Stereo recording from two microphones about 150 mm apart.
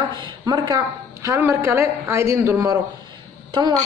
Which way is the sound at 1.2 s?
20° right (ahead or behind).